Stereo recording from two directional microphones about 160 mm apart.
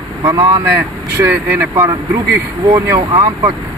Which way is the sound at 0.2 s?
25° right (ahead or behind).